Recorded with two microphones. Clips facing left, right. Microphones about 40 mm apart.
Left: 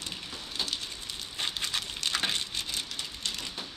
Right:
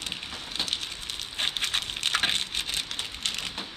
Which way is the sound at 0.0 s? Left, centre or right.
Right.